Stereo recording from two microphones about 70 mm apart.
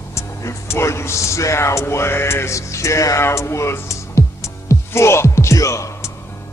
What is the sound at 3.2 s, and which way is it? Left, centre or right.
Music, left.